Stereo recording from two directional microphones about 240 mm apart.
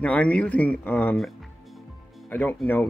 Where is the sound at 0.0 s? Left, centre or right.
Centre.